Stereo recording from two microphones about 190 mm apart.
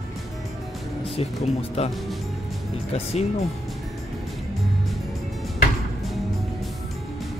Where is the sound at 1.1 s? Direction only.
35° left (ahead or behind).